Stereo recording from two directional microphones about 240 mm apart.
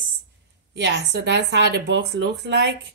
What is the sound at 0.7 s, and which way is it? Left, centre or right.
Speech, right.